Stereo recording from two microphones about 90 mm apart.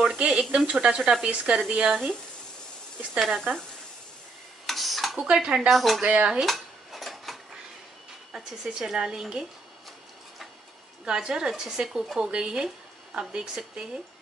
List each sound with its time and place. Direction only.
0.2 s speech: 10° right (ahead or behind)
3.2 s speech: centre (ahead or behind)
4.6 s dishes: centre (ahead or behind)
6.0 s speech: 10° right (ahead or behind)
6.4 s cutlery: centre (ahead or behind)
8.3 s speech: 5° right (ahead or behind)
11.1 s speech: 10° right (ahead or behind)